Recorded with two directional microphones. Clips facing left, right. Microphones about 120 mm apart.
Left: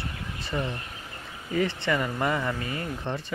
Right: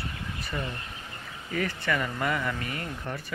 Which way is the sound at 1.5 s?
20° left (ahead or behind).